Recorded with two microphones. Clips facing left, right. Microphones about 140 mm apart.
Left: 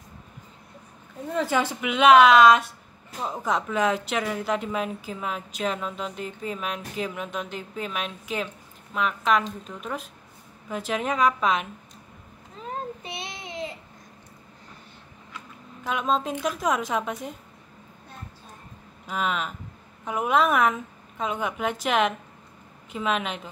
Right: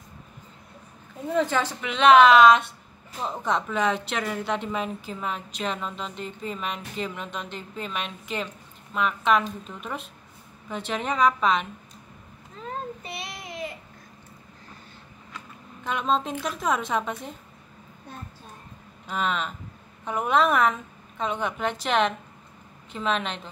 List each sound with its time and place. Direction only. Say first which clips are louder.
1.3 s speech: right 1 dB; 5° left (ahead or behind)
13.2 s child singing: left 1 dB; 25° left (ahead or behind)
15.8 s speech: even; 5° left (ahead or behind)
19.0 s a woman's voice: even; 5° left (ahead or behind)